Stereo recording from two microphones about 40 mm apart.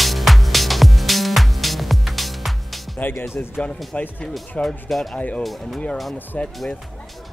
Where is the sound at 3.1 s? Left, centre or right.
Left.